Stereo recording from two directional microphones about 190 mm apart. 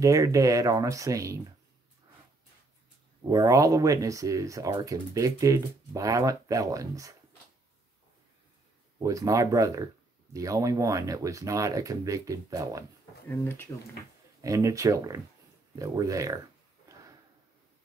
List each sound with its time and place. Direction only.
0.0 s speech: 15° right (ahead or behind)
3.3 s speech: 20° right (ahead or behind)
9.0 s speech: 15° right (ahead or behind)
13.3 s speech: 10° left (ahead or behind)
14.4 s speech: 15° right (ahead or behind)